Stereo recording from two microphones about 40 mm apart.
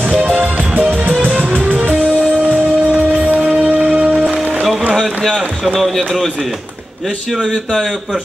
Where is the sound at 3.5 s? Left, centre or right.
Right.